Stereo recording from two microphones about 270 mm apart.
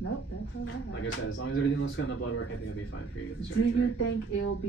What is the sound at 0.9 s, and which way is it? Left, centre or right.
Speech, left.